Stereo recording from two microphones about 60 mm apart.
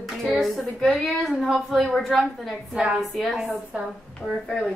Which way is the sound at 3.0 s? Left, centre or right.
Centre.